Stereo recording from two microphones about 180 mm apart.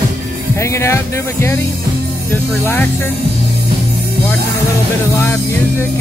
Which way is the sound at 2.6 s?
10° left (ahead or behind).